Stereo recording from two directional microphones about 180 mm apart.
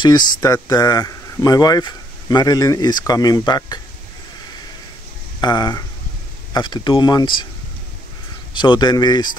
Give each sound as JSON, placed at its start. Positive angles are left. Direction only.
{"t": 0.0, "sound": "speech", "side_deg": 25}
{"t": 5.4, "sound": "speech", "side_deg": 25}
{"t": 8.5, "sound": "speech", "side_deg": 25}